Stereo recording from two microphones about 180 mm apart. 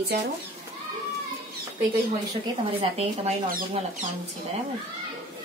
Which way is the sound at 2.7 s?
30° right (ahead or behind).